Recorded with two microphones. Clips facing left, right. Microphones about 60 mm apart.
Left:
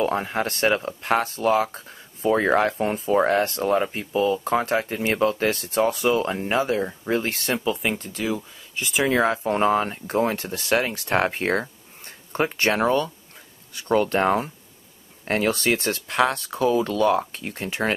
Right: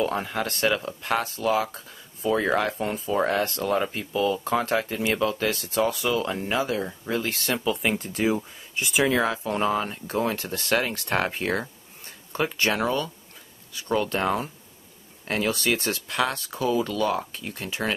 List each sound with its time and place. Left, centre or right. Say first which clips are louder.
0.0 s speech: left 3 dB; left
5.0 s speech: left 3 dB; left
7.5 s speech: even; centre
8.1 s speech: right 2 dB; right
8.7 s speech: even; centre
9.1 s speech: left 3 dB; left